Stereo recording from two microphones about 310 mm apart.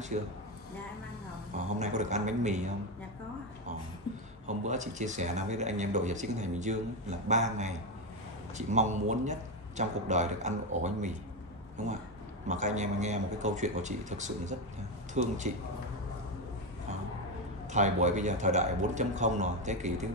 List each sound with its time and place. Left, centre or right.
0.1 s speech: right
1.8 s speech: right
4.5 s speech: right
12.4 s speech: right
17.6 s speech: right